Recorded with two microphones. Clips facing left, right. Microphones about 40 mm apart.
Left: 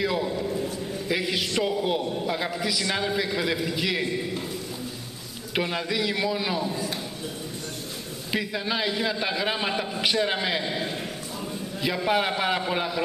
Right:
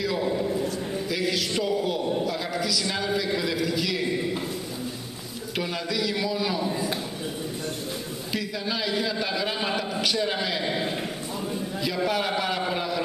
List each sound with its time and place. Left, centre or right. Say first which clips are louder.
0.2 s a sound: right 2 dB; centre
1.0 s a man's voice: left 1 dB; left
5.6 s a man's voice: left 2 dB; left
8.3 s a man's voice: left 3 dB; left
10.6 s a man's voice: right 2 dB; centre
12.1 s a man's voice: left 6 dB; centre